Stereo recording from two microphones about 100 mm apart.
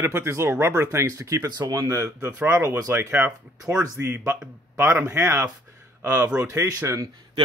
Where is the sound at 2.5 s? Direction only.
35° right (ahead or behind).